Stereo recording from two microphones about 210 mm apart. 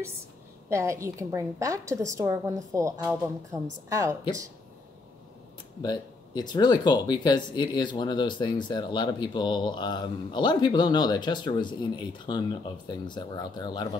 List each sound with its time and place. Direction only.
0.7 s a woman's voice: 15° right (ahead or behind)
5.8 s speech: 20° left (ahead or behind)